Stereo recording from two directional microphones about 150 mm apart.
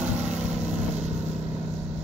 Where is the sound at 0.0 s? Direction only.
50° right (ahead or behind).